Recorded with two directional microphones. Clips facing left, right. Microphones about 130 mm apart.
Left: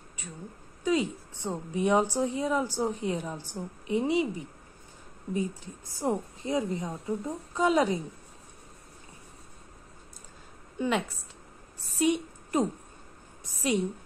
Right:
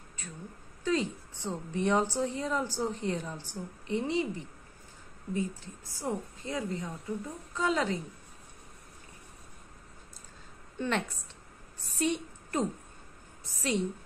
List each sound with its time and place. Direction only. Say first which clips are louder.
0.8 s a woman's voice: left 3 dB; 15° left (ahead or behind)
5.9 s a woman's voice: left 5 dB; 20° left (ahead or behind)
10.8 s a woman's voice: left 3 dB; 10° left (ahead or behind)
12.0 s a sound: left 5 dB; 15° left (ahead or behind)
13.4 s a woman's voice: left 3 dB; 15° left (ahead or behind)